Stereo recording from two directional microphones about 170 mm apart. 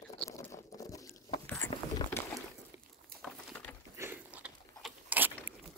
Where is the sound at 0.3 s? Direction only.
20° left (ahead or behind).